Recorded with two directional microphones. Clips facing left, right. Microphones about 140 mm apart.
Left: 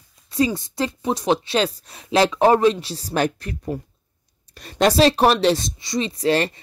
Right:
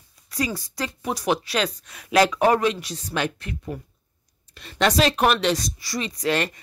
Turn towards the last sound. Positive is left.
turn(degrees=30)  # may be behind; listen again after turning